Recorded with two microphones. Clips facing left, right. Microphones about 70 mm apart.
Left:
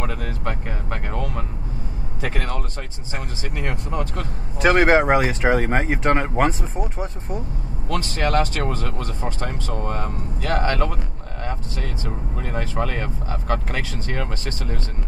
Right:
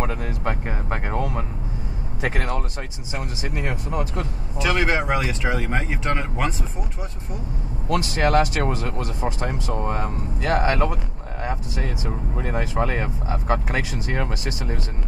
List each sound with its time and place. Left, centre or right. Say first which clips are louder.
0.0 s speech: right 2 dB; right
3.4 s speech: even; centre
4.6 s speech: left 6 dB; left
8.1 s speech: right 1 dB; centre